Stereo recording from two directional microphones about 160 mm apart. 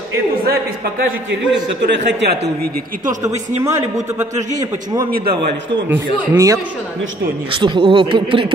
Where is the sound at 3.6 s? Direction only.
20° right (ahead or behind).